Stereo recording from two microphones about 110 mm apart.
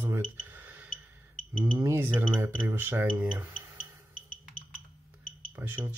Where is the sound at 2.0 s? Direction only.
15° right (ahead or behind).